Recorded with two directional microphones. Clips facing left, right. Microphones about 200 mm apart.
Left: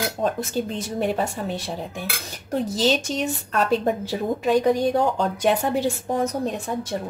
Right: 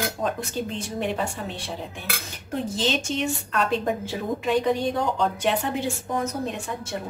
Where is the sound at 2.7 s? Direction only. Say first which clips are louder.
Left 4 dB; 40° left (ahead or behind).